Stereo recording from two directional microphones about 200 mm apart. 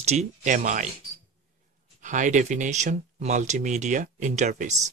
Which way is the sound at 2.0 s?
40° right (ahead or behind).